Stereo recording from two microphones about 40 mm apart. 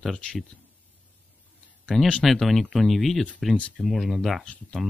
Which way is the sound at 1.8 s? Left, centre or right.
Centre.